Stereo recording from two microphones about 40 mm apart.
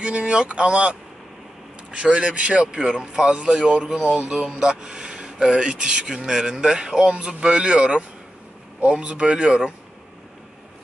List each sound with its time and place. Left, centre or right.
0.0 s a man's voice: right
7.2 s a man's voice: right